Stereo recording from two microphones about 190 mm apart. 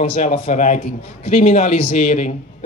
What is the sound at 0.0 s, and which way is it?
A man's voice, 35° left (ahead or behind).